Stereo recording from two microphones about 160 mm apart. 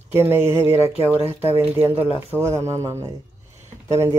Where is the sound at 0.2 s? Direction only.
15° right (ahead or behind).